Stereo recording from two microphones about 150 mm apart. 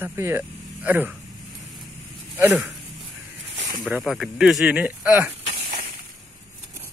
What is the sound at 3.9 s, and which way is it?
Speech, 5° right (ahead or behind).